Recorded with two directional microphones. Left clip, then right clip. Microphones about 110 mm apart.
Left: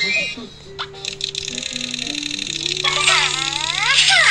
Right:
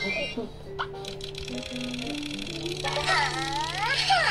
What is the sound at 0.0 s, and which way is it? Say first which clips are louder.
Speech: left 10 dB; 35° right (ahead or behind).